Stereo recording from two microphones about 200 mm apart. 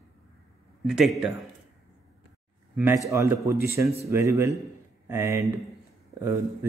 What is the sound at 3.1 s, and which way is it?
A man's voice, 15° right (ahead or behind).